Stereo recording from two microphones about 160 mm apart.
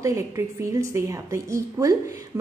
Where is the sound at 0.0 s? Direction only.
20° right (ahead or behind).